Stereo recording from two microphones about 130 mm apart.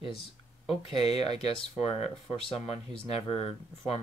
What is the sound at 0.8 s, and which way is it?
Speech, 50° left (ahead or behind).